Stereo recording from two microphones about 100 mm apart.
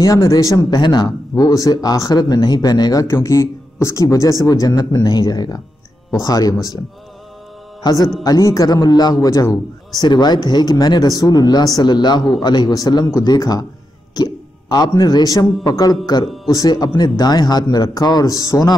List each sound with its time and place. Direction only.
0.0 s speech: 35° left (ahead or behind)
7.8 s a man's voice: 40° left (ahead or behind)